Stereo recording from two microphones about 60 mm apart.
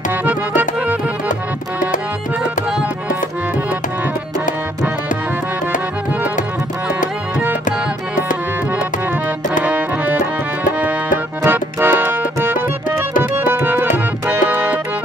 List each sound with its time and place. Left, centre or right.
0.2 s music: right
9.7 s music: right
11.4 s music: right